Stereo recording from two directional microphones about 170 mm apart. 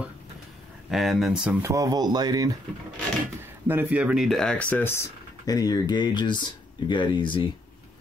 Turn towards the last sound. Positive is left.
turn(degrees=30)  # may be behind; listen again after turning